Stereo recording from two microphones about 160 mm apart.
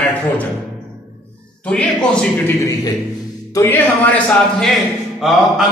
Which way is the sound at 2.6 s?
20° left (ahead or behind).